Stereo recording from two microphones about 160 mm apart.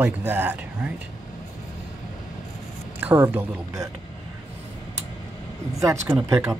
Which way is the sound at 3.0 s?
15° right (ahead or behind).